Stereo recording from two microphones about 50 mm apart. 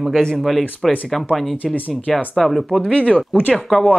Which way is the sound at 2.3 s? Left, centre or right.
Centre.